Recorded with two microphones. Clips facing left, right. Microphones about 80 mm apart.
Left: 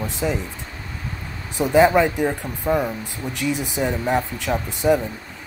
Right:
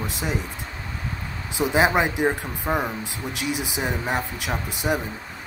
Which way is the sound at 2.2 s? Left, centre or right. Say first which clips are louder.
Left 1 dB; right.